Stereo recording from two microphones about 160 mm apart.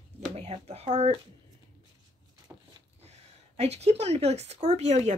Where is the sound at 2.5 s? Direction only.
15° right (ahead or behind).